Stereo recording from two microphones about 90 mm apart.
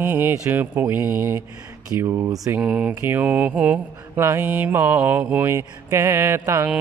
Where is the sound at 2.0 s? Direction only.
35° right (ahead or behind).